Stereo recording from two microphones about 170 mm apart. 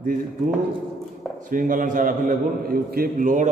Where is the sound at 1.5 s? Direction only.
50° right (ahead or behind).